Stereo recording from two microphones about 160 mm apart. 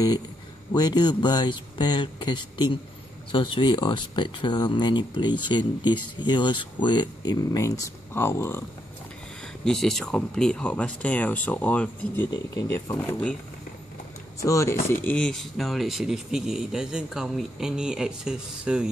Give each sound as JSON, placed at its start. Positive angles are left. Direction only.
{"t": 0.7, "sound": "speech", "side_deg": 25}
{"t": 9.7, "sound": "speech", "side_deg": 0}
{"t": 12.5, "sound": "speech", "side_deg": 20}
{"t": 14.4, "sound": "speech", "side_deg": 20}